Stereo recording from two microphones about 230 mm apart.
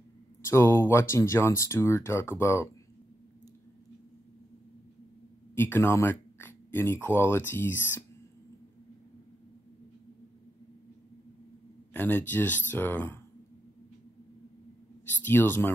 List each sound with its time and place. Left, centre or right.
0.5 s speech: centre
5.5 s speech: centre
11.9 s speech: centre
15.2 s speech: centre